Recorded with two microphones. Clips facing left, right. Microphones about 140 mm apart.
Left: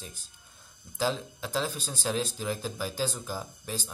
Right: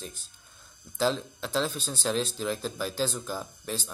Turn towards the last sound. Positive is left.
turn(degrees=10)  # may be behind; listen again after turning